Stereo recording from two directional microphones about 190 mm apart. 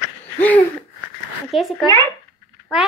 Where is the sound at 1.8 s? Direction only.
20° right (ahead or behind).